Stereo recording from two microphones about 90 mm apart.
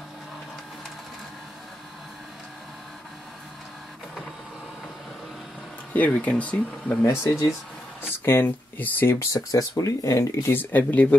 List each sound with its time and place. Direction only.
6.1 s speech: 15° left (ahead or behind)
7.1 s speech: 30° left (ahead or behind)
9.2 s speech: 40° left (ahead or behind)
10.5 s speech: 20° left (ahead or behind)